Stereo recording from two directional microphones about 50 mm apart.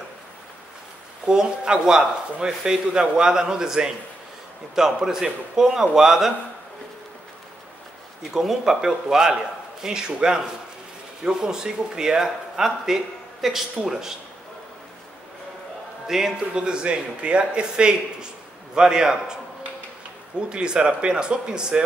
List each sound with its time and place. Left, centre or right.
1.2 s speech: centre
8.2 s speech: centre
16.1 s speech: centre
20.3 s speech: centre